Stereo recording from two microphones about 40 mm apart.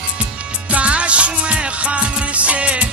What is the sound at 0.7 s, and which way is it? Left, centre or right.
Music, right.